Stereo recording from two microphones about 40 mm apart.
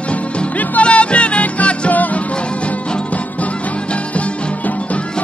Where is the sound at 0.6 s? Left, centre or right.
Left.